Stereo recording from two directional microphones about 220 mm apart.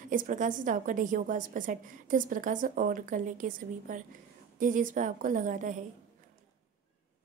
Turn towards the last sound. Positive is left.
turn(degrees=-35)  # may be behind; listen again after turning